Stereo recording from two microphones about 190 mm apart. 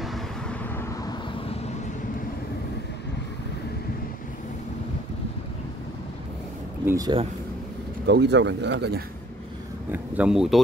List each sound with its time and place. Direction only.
0.7 s vehicle: 15° left (ahead or behind)
6.9 s speech: 20° right (ahead or behind)
8.1 s speech: 65° right (ahead or behind)
9.9 s speech: 5° right (ahead or behind)